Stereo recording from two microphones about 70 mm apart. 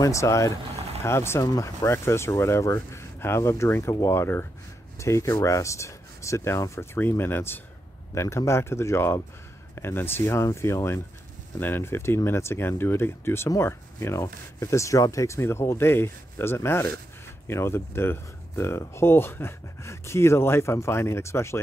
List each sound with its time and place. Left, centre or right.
0.0 s speech: left
8.1 s speech: left